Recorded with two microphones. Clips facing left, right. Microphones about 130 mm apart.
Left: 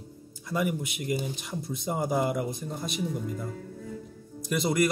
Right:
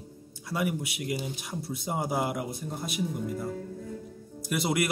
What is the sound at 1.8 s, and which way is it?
Speech, 5° right (ahead or behind).